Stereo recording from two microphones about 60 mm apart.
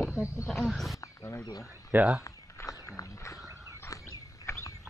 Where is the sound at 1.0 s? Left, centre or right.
Left.